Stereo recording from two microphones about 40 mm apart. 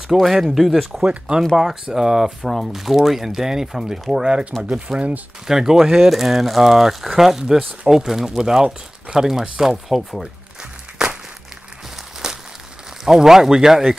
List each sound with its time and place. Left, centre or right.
0.1 s speech: centre
2.4 s speech: centre; by 5.0 s right
5.5 s speech: centre
9.8 s speech: centre
10.2 s crumpling: centre
12.2 s crumpling: centre
13.0 s speech: centre